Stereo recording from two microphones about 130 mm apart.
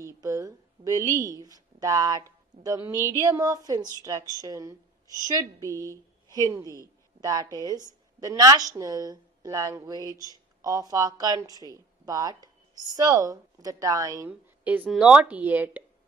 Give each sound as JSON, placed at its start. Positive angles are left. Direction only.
{"t": 0.0, "sound": "a sound", "side_deg": -25}
{"t": 1.1, "sound": "a woman's voice", "side_deg": -25}
{"t": 14.6, "sound": "speech", "side_deg": -15}